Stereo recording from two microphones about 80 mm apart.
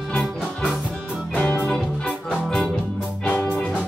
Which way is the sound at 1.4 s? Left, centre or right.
Centre.